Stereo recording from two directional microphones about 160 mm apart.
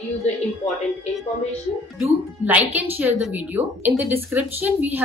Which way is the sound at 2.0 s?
10° right (ahead or behind).